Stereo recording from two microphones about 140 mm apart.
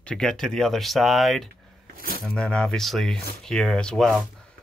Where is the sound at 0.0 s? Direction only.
5° left (ahead or behind).